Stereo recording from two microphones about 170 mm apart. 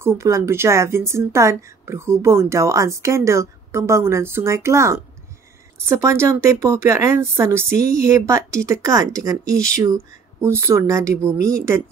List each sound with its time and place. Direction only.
0.0 s speech: 15° right (ahead or behind)